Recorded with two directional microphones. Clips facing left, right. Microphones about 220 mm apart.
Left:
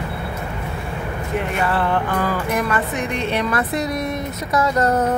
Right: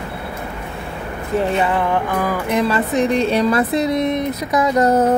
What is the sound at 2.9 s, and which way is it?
Speech, 35° right (ahead or behind).